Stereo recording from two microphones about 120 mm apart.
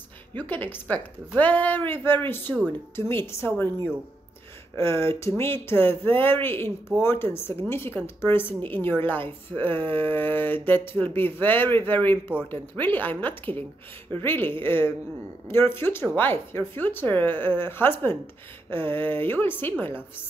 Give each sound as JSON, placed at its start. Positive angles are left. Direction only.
{"t": 0.3, "sound": "a woman's voice", "side_deg": 15}